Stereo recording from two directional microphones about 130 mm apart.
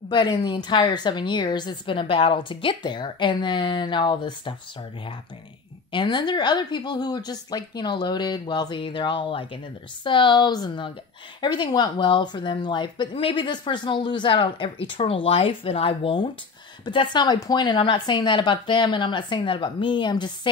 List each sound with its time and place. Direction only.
0.1 s speech: 35° left (ahead or behind)
5.9 s speech: 35° left (ahead or behind)